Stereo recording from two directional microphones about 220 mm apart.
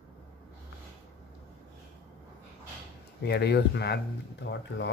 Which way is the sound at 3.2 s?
50° left (ahead or behind).